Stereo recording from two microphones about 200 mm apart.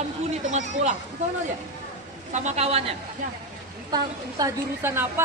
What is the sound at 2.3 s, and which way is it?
Speech, 35° right (ahead or behind).